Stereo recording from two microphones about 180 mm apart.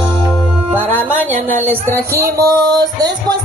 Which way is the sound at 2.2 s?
20° right (ahead or behind).